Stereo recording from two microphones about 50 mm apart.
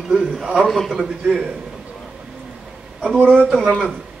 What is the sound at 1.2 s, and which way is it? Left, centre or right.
Speech, right.